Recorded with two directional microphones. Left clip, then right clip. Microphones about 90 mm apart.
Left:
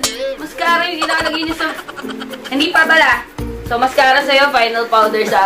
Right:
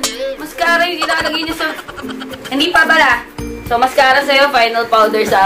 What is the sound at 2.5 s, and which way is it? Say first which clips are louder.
A woman's voice: right 1 dB; 50° right (ahead or behind).